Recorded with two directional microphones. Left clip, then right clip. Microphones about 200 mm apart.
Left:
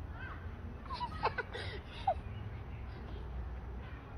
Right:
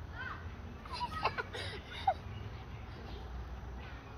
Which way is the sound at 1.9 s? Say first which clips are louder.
Right 1 dB; 10° left (ahead or behind).